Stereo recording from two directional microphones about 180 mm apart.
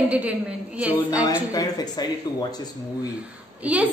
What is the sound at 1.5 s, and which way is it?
Speech, 20° left (ahead or behind).